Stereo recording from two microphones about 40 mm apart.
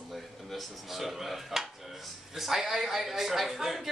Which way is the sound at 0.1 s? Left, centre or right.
Centre.